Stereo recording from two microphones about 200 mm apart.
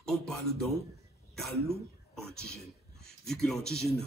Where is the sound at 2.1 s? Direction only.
5° left (ahead or behind).